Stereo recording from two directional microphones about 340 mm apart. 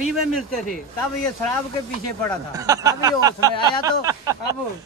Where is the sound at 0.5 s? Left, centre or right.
Left.